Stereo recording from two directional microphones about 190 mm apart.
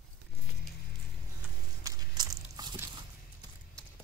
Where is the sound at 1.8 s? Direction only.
20° right (ahead or behind).